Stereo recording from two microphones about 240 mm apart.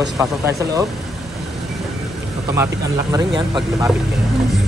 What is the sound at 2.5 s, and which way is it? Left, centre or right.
Speech, centre.